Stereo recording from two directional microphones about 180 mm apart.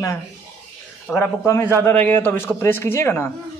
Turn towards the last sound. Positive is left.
turn(degrees=15)  # may be behind; listen again after turning